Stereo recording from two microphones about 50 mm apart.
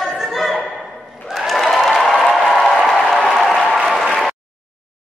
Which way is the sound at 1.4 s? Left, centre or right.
Centre.